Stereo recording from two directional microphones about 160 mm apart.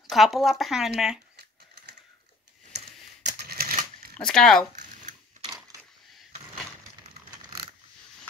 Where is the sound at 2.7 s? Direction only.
90° right.